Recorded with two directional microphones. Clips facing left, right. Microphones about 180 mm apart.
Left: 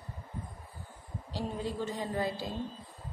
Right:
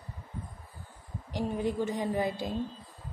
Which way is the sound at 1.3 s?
15° right (ahead or behind).